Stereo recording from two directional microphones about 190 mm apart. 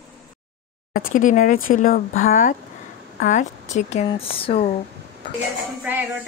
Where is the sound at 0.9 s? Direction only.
45° left (ahead or behind); by 4.6 s 30° left (ahead or behind).